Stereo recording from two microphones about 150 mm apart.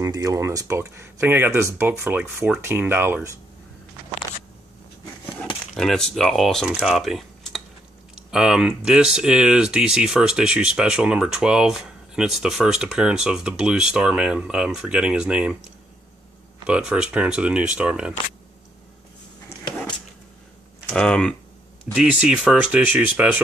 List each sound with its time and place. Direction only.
0.0 s speech: 25° right (ahead or behind)
5.8 s speech: 5° left (ahead or behind)
16.6 s speech: 5° right (ahead or behind)
20.9 s speech: 5° left (ahead or behind)
21.9 s speech: 5° right (ahead or behind)